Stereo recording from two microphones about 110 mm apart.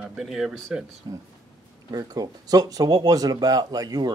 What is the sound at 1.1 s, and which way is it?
Speech, 40° right (ahead or behind).